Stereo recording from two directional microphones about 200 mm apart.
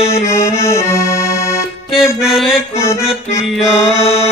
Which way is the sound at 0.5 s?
15° left (ahead or behind).